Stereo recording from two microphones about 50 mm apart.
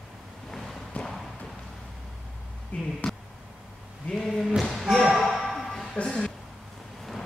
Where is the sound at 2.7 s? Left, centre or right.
Left.